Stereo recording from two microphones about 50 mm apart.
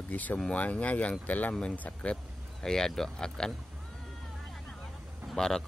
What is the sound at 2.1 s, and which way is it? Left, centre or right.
Speech, centre.